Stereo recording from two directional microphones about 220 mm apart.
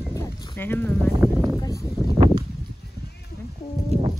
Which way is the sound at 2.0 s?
25° right (ahead or behind).